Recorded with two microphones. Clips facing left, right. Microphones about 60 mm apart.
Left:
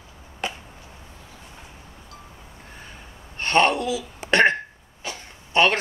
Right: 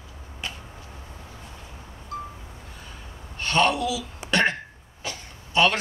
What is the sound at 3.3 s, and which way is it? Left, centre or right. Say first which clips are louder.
Speech: left 2 dB; left.